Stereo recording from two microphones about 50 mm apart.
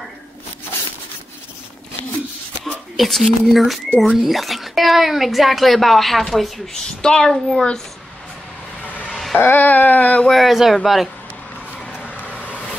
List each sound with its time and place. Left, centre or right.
2.6 s speech: centre
7.0 s a woman's voice: centre
8.8 s a sound: left
9.1 s music: centre
9.4 s speech: left
10.2 s speech: centre
12.1 s vehicle: left